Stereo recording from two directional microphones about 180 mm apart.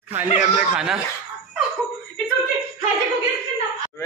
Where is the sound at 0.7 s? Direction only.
5° right (ahead or behind).